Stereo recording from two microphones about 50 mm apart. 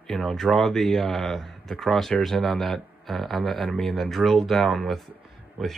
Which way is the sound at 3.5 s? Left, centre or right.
Centre.